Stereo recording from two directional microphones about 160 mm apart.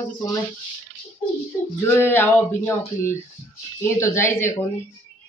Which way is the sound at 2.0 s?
15° left (ahead or behind).